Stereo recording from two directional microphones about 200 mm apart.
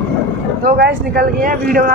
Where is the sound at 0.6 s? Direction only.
50° right (ahead or behind).